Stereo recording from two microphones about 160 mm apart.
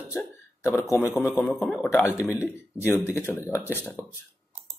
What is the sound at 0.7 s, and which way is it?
Speech, 20° left (ahead or behind).